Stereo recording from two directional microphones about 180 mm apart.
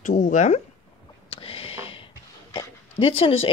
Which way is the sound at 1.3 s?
30° left (ahead or behind).